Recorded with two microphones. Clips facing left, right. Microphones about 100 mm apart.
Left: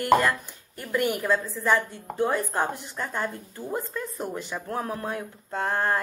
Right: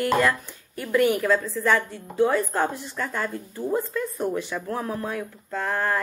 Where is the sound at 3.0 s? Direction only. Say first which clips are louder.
Right 2 dB; 20° left (ahead or behind).